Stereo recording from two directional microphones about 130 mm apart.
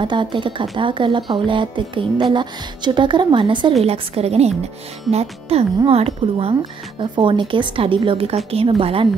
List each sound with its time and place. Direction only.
0.0 s speech: 35° right (ahead or behind)
3.8 s a woman's voice: 50° right (ahead or behind)